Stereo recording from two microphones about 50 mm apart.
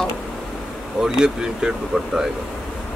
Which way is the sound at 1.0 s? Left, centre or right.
Centre.